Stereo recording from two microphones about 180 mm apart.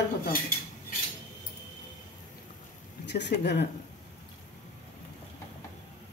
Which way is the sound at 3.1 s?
70° left (ahead or behind).